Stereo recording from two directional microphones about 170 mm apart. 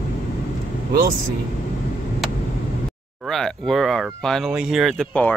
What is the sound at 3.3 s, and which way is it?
Speech, 5° left (ahead or behind).